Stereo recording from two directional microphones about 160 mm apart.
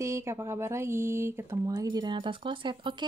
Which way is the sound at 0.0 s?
20° right (ahead or behind).